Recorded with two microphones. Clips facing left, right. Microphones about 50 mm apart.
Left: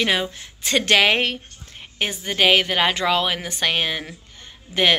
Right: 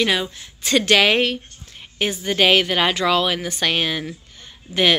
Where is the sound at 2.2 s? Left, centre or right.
Centre.